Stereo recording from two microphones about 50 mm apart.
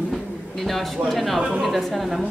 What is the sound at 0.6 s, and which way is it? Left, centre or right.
A woman's voice, centre.